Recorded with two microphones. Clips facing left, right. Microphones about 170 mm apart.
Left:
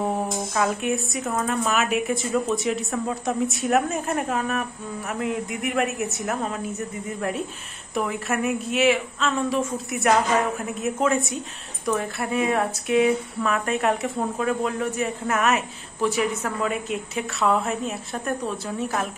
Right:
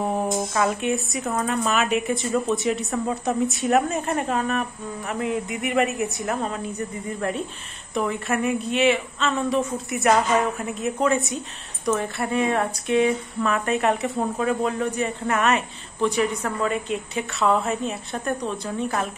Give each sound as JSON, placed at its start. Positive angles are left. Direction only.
{"t": 0.6, "sound": "speech", "side_deg": 0}